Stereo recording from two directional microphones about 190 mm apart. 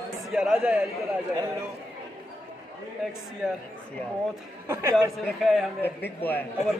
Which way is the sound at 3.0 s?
Centre (ahead or behind).